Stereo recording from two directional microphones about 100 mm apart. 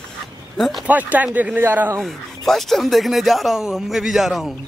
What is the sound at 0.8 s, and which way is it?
Speech, 15° right (ahead or behind).